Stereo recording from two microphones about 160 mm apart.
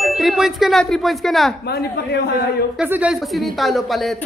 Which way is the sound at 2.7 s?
10° right (ahead or behind).